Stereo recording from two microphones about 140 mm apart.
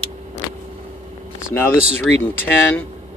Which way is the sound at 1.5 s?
15° left (ahead or behind).